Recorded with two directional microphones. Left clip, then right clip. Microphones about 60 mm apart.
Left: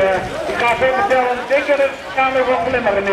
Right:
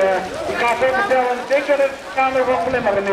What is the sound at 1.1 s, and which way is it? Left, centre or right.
Speech, centre.